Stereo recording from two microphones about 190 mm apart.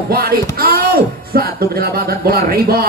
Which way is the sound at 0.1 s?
50° right (ahead or behind).